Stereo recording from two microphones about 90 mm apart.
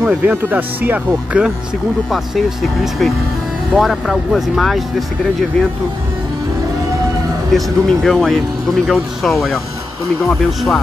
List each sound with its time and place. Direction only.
0.0 s speech: 15° right (ahead or behind)
2.0 s speech: centre (ahead or behind)
7.5 s speech: centre (ahead or behind)